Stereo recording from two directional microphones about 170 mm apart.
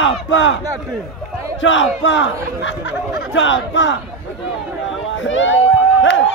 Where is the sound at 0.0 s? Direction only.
90° left.